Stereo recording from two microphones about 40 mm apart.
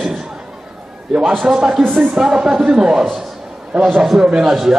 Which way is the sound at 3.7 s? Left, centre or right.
Right.